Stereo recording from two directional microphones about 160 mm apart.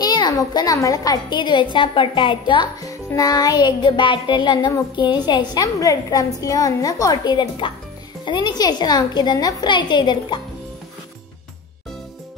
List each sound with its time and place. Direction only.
0.0 s a woman's voice: 25° left (ahead or behind)